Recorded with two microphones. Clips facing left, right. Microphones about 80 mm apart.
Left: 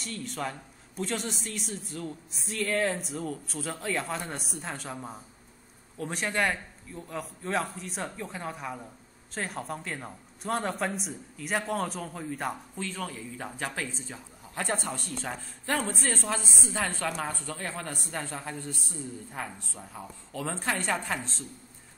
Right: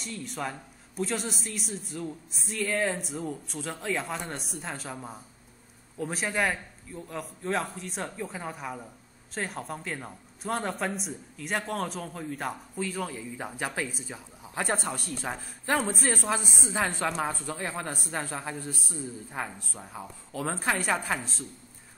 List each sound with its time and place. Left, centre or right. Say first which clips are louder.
0.0 s speech: even; centre